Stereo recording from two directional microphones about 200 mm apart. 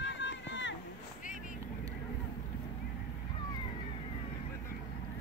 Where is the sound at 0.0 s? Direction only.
65° left (ahead or behind).